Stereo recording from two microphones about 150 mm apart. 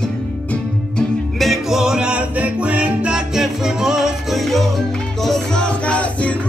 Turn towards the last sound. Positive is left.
turn(degrees=10)  # may be behind; listen again after turning